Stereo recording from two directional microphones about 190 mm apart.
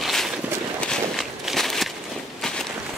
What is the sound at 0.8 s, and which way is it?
Walk, centre (ahead or behind).